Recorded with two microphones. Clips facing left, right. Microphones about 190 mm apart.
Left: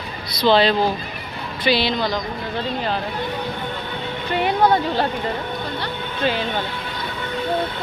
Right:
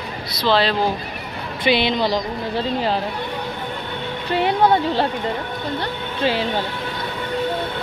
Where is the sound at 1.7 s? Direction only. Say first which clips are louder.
Right 2 dB; 20° right (ahead or behind).